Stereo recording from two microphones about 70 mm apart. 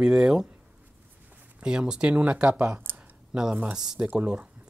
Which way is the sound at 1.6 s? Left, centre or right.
Centre.